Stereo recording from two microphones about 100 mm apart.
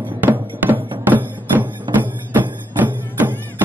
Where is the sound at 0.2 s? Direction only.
20° right (ahead or behind).